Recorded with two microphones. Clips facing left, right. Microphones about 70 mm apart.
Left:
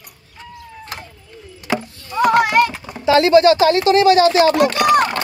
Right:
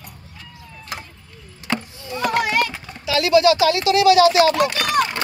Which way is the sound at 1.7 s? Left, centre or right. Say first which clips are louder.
Left 3 dB; centre.